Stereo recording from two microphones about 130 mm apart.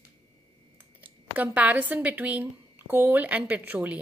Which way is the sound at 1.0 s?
10° right (ahead or behind).